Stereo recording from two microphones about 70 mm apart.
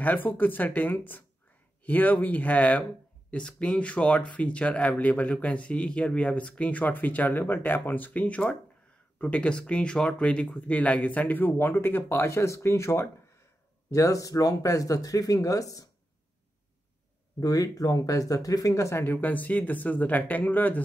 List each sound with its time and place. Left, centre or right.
0.0 s speech: left
17.4 s speech: left
19.2 s speech: left